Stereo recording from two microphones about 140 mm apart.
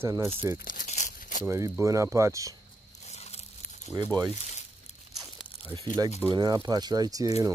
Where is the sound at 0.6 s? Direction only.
75° left (ahead or behind).